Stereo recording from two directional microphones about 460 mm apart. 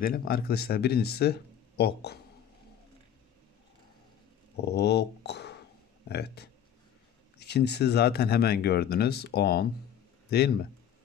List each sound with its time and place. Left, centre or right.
0.0 s speech: centre
4.6 s speech: left